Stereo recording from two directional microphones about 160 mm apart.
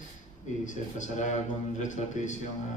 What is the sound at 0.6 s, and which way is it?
A man's voice, 50° left (ahead or behind).